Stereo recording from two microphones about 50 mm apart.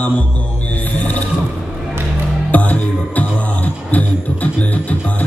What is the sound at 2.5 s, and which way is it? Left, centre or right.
Music, left.